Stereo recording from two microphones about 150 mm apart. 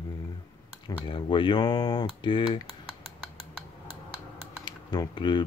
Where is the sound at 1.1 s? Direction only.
30° left (ahead or behind).